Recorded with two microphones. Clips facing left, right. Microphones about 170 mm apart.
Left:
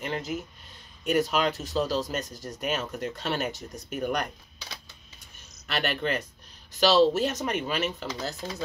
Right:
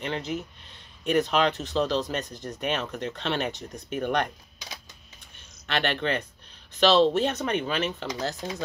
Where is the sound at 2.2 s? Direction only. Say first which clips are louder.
Right 1 dB; 40° left (ahead or behind).